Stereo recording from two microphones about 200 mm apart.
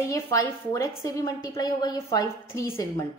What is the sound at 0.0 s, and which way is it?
A woman's voice, 15° left (ahead or behind).